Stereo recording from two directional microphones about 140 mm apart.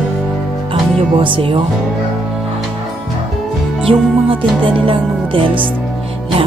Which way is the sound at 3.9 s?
40° right (ahead or behind).